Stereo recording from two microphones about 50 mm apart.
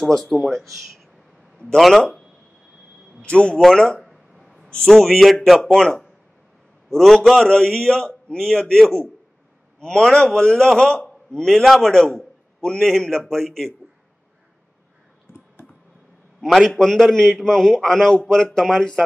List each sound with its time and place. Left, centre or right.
0.0 s a man's voice: centre
2.0 s a man's voice: centre
4.0 s a sound: centre
4.8 s a man's voice: centre
5.6 s a man's voice: centre
7.4 s a man's voice: centre
16.3 s a man's voice: centre